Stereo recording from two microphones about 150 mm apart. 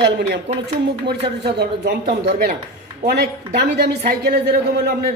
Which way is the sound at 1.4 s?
90° right.